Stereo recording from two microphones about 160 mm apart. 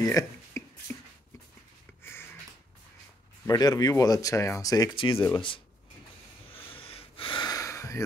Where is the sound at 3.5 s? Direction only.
25° left (ahead or behind).